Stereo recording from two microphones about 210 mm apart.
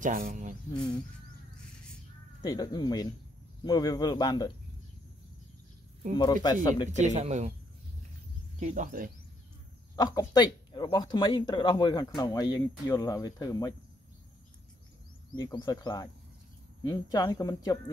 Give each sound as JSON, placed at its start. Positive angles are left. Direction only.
{"t": 0.0, "sound": "speech", "side_deg": -40}
{"t": 2.4, "sound": "speech", "side_deg": 20}
{"t": 6.1, "sound": "speech", "side_deg": 20}
{"t": 6.9, "sound": "speech", "side_deg": -35}
{"t": 8.5, "sound": "speech", "side_deg": -35}
{"t": 9.9, "sound": "speech", "side_deg": 20}
{"t": 15.3, "sound": "speech", "side_deg": 20}